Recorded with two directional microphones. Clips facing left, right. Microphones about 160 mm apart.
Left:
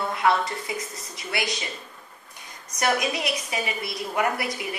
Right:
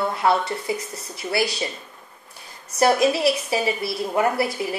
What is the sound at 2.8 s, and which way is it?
A woman's voice, 30° right (ahead or behind).